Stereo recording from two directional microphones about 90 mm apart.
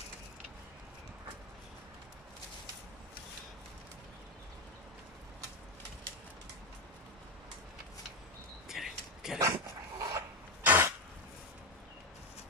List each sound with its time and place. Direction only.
8.6 s a sound: 5° right (ahead or behind)
9.4 s dog: 40° right (ahead or behind)
10.6 s cough: 20° right (ahead or behind)